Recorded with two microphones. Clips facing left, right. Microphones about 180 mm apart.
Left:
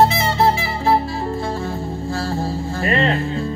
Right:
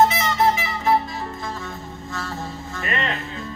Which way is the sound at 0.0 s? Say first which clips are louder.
Left 2 dB; 30° left (ahead or behind).